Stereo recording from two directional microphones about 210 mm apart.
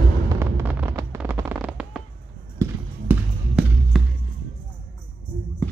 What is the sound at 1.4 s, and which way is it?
Fireworks, 5° right (ahead or behind).